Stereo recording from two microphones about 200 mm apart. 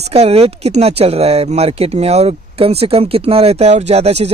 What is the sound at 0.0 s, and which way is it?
Speech, 30° right (ahead or behind).